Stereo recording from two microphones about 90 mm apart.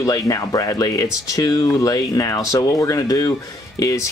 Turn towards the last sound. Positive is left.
turn(degrees=35)  # may be behind; listen again after turning